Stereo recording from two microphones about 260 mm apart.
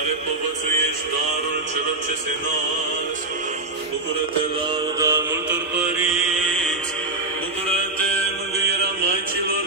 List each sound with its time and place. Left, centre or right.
4.9 s music: centre
6.4 s music: centre